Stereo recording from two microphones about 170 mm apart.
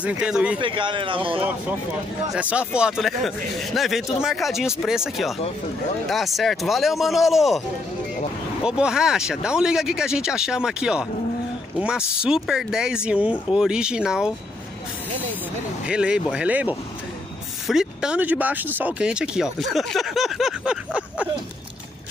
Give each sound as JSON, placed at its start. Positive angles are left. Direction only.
{"t": 0.0, "sound": "speech", "side_deg": -5}
{"t": 0.6, "sound": "speech", "side_deg": -30}
{"t": 2.3, "sound": "speech", "side_deg": -5}
{"t": 8.6, "sound": "speech", "side_deg": -5}
{"t": 15.8, "sound": "speech", "side_deg": -5}